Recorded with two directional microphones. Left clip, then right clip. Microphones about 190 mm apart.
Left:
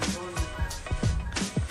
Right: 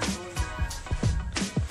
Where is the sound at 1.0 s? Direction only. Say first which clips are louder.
Right 1 dB; centre (ahead or behind).